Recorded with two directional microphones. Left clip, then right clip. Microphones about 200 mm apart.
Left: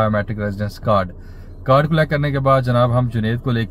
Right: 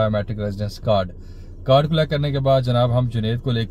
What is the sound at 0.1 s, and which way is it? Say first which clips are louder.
Speech: left 3 dB; 15° right (ahead or behind).